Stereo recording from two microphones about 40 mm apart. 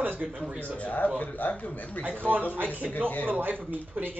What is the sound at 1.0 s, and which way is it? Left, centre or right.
Speech, left.